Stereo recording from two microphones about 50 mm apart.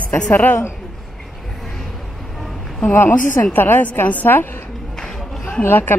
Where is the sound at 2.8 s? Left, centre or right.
Left.